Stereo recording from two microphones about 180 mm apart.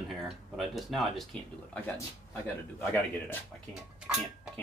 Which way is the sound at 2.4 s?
10° left (ahead or behind).